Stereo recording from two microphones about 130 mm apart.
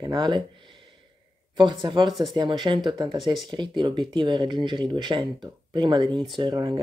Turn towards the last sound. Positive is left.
turn(degrees=-35)  # may be behind; listen again after turning